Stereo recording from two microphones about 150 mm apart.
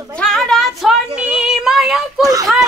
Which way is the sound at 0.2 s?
5° left (ahead or behind).